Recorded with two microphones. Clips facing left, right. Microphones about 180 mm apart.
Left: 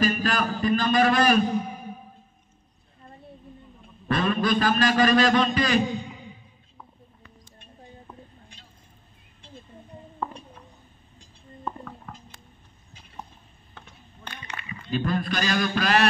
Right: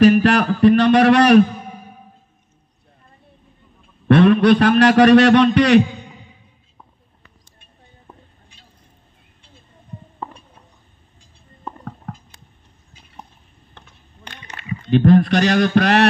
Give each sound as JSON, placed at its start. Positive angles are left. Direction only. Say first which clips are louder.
{"t": 0.0, "sound": "a man's voice", "louder": "right 12 dB", "side_deg": -70}
{"t": 4.1, "sound": "a man's voice", "louder": "right 12 dB", "side_deg": -70}
{"t": 14.9, "sound": "a man's voice", "louder": "right 13 dB", "side_deg": -65}